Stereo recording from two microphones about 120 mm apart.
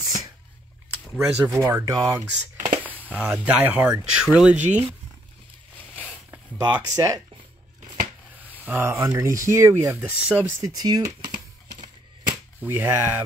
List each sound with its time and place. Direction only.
0.0 s a sound: 35° right (ahead or behind)
1.2 s speech: 10° right (ahead or behind)
1.5 s speech: 25° right (ahead or behind)
2.8 s a sound: 15° left (ahead or behind)
3.2 s speech: 10° right (ahead or behind)
5.8 s a sound: 15° left (ahead or behind)
6.6 s speech: 30° right (ahead or behind)
8.6 s speech: 20° right (ahead or behind)
10.6 s speech: 30° right (ahead or behind)
12.5 s speech: 20° right (ahead or behind)